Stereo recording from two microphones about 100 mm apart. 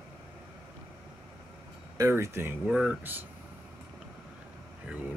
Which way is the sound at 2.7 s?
10° right (ahead or behind).